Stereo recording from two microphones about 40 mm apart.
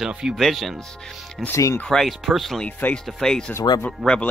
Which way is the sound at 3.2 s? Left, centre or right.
Centre.